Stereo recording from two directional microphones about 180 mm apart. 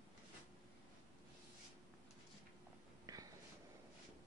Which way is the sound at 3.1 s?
20° right (ahead or behind).